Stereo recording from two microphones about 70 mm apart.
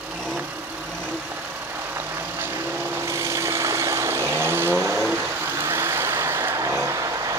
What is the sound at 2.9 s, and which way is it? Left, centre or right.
Vehicle, right.